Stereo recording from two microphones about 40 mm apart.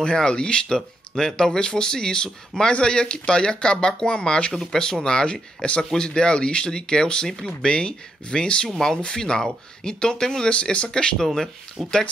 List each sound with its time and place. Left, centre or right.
0.0 s speech: left
0.7 s speech: centre
1.3 s speech: centre
8.6 s speech: centre
10.5 s speech: left
10.9 s speech: centre
11.8 s speech: centre